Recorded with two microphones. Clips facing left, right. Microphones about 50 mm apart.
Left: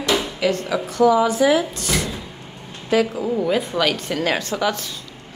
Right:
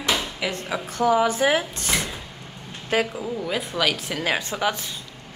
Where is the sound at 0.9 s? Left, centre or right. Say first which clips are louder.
Left 4 dB; right.